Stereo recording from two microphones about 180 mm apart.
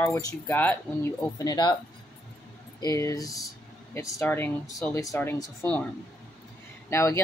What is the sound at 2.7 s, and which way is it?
Speech, 20° left (ahead or behind).